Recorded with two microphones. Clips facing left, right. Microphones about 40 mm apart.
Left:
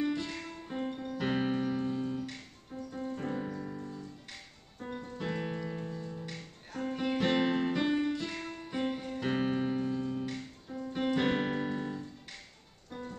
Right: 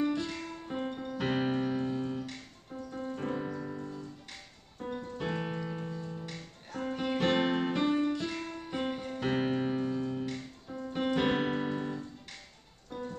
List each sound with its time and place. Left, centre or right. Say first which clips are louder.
0.0 s music: right 2 dB; centre
0.7 s music: even; centre
4.3 s music: even; centre
5.1 s music: even; centre
6.2 s music: even; centre
7.3 s music: even; centre
7.8 s music: right 1 dB; centre
8.6 s music: left 1 dB; centre
10.7 s piano: even; centre
12.9 s music: right 3 dB; centre